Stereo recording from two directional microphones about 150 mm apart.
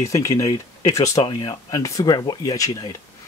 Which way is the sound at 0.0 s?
20° left (ahead or behind).